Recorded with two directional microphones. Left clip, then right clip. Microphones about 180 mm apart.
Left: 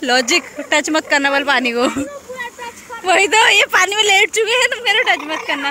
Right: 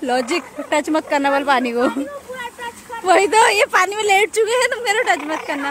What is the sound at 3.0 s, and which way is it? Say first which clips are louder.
Speech: left 1 dB; 15° right (ahead or behind).